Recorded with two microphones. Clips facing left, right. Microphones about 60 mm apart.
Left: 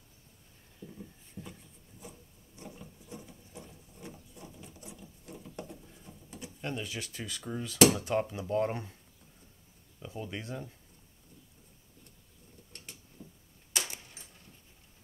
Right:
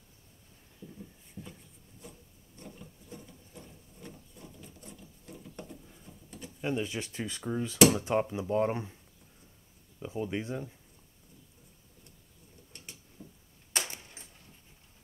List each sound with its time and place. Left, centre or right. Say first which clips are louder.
0.7 s a sound: left 1 dB; centre
6.6 s speech: right 5 dB; right
9.9 s speech: right 6 dB; centre
12.7 s mechanisms: even; centre
13.9 s keys jangling: even; right